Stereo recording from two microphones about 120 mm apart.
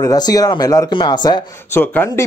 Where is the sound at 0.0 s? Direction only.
30° left (ahead or behind).